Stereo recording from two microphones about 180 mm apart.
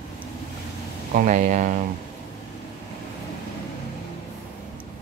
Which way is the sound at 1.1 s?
45° right (ahead or behind).